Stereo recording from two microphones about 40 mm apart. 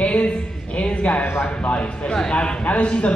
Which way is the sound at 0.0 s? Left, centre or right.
Left.